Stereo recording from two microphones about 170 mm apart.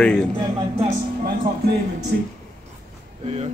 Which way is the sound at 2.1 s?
65° right (ahead or behind).